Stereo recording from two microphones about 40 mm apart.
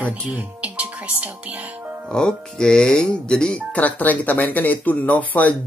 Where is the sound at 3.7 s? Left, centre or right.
Left.